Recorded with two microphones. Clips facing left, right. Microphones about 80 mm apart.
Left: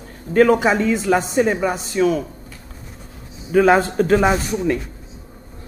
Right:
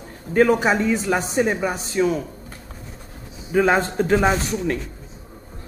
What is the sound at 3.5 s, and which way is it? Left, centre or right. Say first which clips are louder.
A man's voice: left 4 dB; centre.